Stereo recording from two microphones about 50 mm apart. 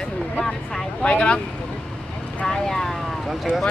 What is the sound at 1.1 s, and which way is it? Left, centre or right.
Speech, left.